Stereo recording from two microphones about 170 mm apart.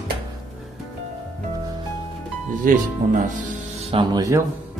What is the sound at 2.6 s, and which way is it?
Speech, 50° right (ahead or behind).